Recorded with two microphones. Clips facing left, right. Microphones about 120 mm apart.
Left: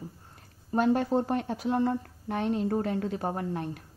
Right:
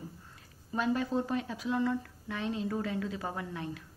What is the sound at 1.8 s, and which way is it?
Speech, 50° left (ahead or behind).